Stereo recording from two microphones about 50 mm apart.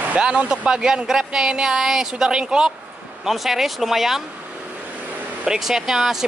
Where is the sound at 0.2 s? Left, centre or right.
Centre.